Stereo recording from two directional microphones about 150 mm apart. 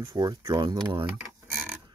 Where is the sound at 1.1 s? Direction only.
10° right (ahead or behind).